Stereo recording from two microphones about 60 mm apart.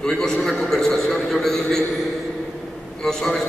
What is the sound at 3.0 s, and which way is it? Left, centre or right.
Speech, centre.